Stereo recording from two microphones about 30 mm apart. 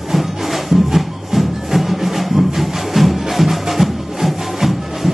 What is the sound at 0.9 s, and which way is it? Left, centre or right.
Music, centre.